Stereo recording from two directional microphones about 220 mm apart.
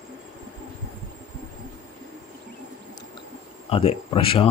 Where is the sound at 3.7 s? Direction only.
25° left (ahead or behind).